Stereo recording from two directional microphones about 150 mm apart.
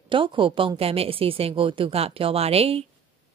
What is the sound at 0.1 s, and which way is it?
Speech, 35° right (ahead or behind).